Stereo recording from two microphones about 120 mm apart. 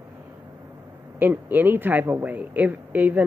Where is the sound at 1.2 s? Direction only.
15° right (ahead or behind).